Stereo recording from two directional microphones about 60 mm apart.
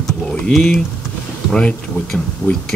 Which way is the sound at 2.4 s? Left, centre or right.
Left.